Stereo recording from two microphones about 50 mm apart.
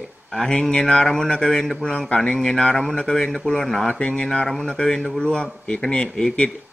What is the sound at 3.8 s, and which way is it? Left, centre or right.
Speech, centre.